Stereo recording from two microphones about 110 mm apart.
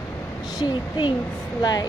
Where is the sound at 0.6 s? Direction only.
45° left (ahead or behind).